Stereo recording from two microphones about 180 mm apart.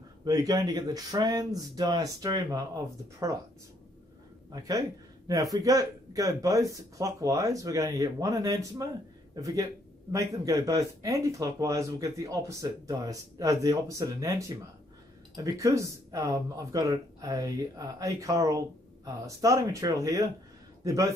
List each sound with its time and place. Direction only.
0.2 s speech: 20° right (ahead or behind)
4.5 s a man's voice: 20° right (ahead or behind)